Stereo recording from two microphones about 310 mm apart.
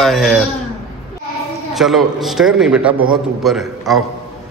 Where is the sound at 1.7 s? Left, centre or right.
Centre.